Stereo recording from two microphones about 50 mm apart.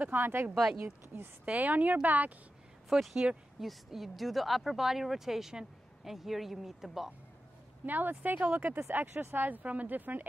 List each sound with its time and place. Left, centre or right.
0.0 s speech: right
0.6 s speech: centre
0.8 s speech: right
1.6 s speech: right
2.9 s speech: centre
7.8 s speech: right